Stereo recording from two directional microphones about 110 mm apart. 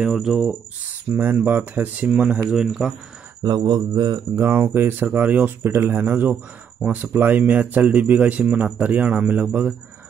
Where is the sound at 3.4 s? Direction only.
40° right (ahead or behind).